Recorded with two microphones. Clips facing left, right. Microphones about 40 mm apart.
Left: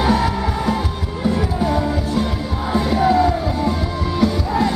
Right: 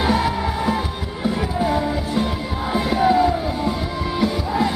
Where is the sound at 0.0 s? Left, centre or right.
Centre.